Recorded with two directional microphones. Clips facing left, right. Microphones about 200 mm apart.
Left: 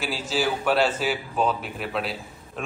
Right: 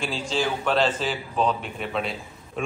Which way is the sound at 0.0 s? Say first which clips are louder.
Even; 5° left (ahead or behind).